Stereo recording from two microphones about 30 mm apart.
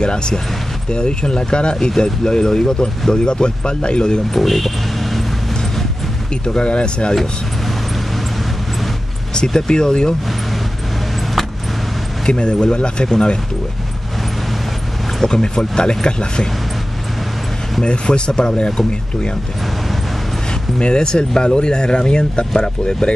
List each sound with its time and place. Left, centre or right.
0.0 s speech: left
4.3 s vehicle: centre
6.4 s speech: left
9.5 s speech: left
12.3 s speech: left
15.2 s speech: left
17.8 s speech: left
20.8 s speech: left